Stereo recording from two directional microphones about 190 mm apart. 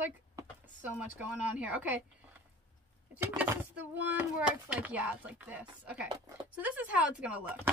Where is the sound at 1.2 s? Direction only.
5° right (ahead or behind).